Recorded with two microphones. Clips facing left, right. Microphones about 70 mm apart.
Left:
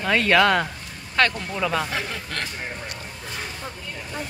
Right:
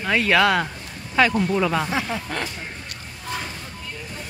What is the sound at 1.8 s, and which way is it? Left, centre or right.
Speech, right.